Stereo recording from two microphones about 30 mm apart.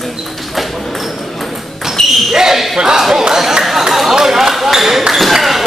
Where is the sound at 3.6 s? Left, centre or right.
Centre.